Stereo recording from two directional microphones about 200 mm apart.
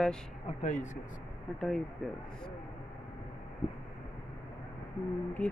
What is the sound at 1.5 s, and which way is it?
Speech, 5° left (ahead or behind).